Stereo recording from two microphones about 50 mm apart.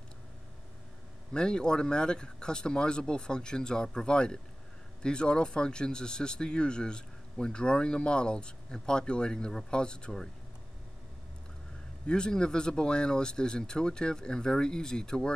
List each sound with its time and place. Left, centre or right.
1.3 s speech: centre
12.1 s speech: centre